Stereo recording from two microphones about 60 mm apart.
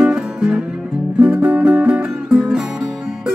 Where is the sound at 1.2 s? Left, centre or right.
Right.